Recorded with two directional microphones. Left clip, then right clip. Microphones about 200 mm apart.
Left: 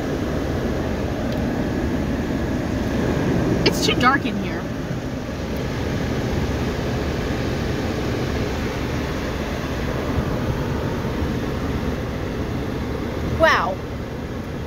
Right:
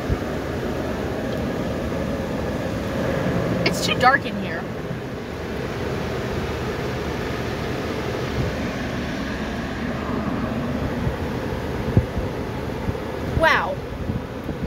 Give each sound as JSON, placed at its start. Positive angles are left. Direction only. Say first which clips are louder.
{"t": 3.6, "sound": "vehicle", "louder": "even", "side_deg": 5}
{"t": 13.4, "sound": "vehicle", "louder": "left 2 dB", "side_deg": 10}